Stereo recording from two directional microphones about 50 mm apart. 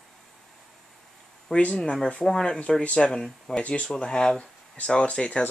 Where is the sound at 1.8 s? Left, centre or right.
Centre.